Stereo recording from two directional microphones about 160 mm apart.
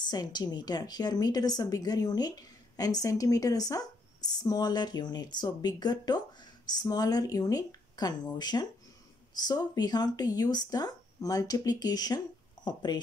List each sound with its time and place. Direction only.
0.0 s a woman's voice: 25° left (ahead or behind)